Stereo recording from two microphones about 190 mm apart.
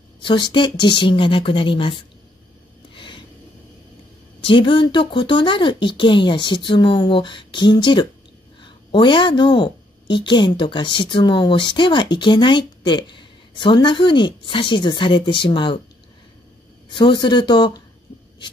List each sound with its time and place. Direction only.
0.2 s a woman's voice: 25° left (ahead or behind)
2.9 s a sound: 25° left (ahead or behind)
4.4 s a woman's voice: 25° left (ahead or behind)
16.9 s a woman's voice: 25° left (ahead or behind)